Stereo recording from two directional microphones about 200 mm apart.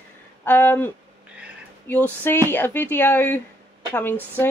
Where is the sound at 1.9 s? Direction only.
10° left (ahead or behind).